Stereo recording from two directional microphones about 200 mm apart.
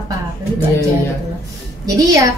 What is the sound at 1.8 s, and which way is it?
Speech, 15° right (ahead or behind).